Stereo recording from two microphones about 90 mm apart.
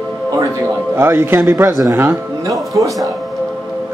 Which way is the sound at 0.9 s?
25° right (ahead or behind).